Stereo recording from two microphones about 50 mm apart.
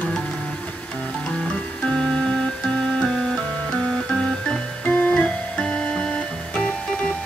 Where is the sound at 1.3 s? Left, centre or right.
Centre.